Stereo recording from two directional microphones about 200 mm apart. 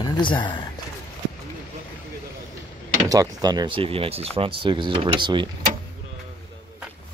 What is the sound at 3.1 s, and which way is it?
Speech, 20° right (ahead or behind).